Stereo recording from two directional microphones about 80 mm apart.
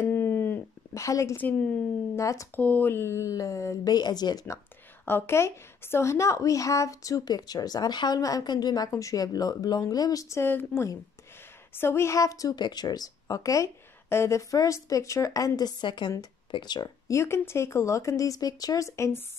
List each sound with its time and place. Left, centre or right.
0.1 s a sound: left
0.9 s speech: left
1.3 s a woman's voice: left
2.1 s speech: left
2.5 s speech: left
3.8 s speech: left
5.0 s a woman's voice: left
8.2 s a woman's voice: left
10.3 s a woman's voice: left
12.5 s a woman's voice: left
14.0 s a woman's voice: left
17.1 s speech: left